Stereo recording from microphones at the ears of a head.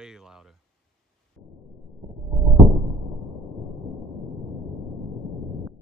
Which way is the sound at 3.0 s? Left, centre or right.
Left.